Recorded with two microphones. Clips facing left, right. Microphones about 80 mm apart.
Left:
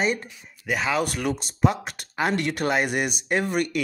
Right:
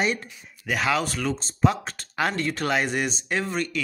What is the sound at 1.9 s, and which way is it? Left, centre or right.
Speech, centre.